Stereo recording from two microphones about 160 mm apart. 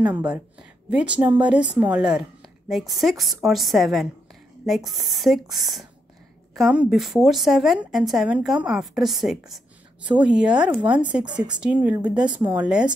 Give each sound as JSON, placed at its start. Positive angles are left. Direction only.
{"t": 0.8, "sound": "a woman's voice", "side_deg": -5}